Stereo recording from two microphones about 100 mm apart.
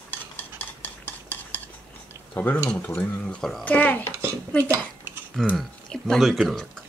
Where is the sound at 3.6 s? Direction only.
15° left (ahead or behind).